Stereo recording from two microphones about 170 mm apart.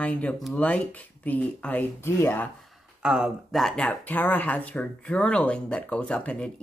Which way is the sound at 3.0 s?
5° right (ahead or behind).